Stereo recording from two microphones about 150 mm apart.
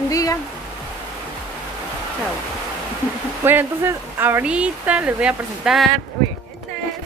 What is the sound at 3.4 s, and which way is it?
Speech, 15° right (ahead or behind).